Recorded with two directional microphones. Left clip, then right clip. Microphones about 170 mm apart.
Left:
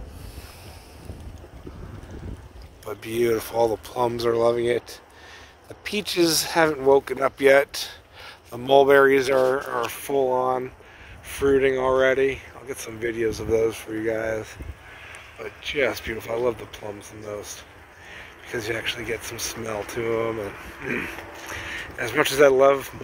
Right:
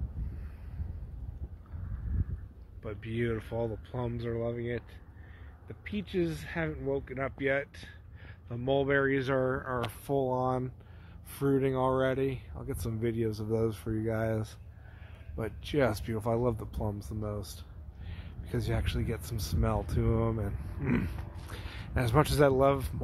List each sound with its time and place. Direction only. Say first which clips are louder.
3.0 s speech: left 12 dB; 20° left (ahead or behind); by 4.8 s 40° left (ahead or behind)
5.9 s speech: left 12 dB; 40° left (ahead or behind); by 9.9 s 5° left (ahead or behind)
10.0 s speech: left 8 dB; 10° right (ahead or behind)
15.3 s speech: left 5 dB; 30° right (ahead or behind)
18.1 s speech: left 8 dB; 20° right (ahead or behind)